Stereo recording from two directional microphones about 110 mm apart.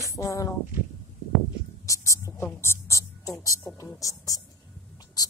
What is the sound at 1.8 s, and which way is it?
A woman's voice, 30° left (ahead or behind).